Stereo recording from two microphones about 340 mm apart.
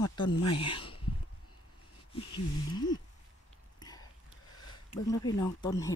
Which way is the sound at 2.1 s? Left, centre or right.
Centre.